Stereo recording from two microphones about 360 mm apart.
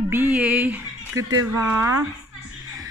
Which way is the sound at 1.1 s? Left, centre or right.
Right.